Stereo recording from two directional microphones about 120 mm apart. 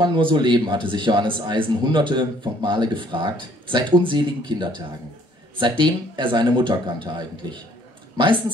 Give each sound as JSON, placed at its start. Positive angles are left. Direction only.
{"t": 0.0, "sound": "speech", "side_deg": -40}